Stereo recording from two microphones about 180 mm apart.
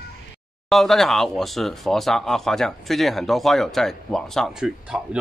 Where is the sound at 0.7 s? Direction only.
Centre (ahead or behind).